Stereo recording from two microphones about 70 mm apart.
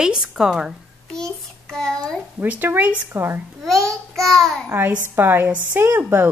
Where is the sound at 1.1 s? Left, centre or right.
Centre.